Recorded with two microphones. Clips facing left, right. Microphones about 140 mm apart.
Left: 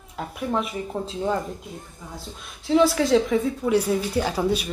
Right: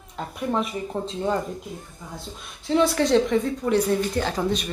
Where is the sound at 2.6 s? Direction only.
Centre (ahead or behind).